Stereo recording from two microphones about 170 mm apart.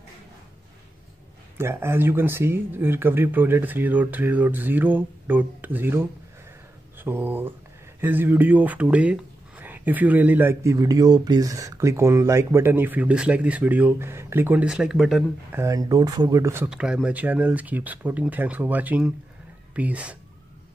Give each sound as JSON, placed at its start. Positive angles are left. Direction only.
{"t": 1.6, "sound": "speech", "side_deg": -15}
{"t": 15.5, "sound": "speech", "side_deg": -20}
{"t": 16.6, "sound": "speech", "side_deg": -5}